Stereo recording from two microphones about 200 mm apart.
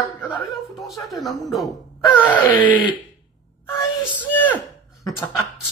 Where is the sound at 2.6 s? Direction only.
25° left (ahead or behind).